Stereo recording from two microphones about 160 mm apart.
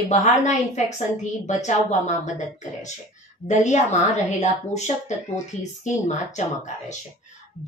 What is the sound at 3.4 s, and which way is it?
A woman's voice, 45° left (ahead or behind).